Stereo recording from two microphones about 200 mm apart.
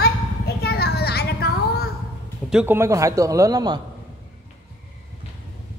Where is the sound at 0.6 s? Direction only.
55° left (ahead or behind).